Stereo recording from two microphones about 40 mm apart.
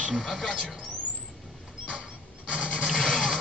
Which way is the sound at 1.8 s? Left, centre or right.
Right.